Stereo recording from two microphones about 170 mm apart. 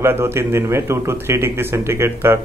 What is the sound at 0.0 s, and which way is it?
Speech, 15° right (ahead or behind).